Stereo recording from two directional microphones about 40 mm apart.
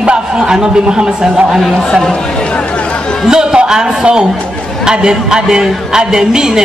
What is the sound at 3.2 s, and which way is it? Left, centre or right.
A man's voice, centre.